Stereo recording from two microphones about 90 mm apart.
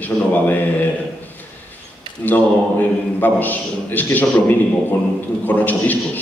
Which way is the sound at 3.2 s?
20° left (ahead or behind).